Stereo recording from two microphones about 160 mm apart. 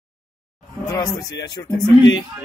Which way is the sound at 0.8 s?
20° left (ahead or behind).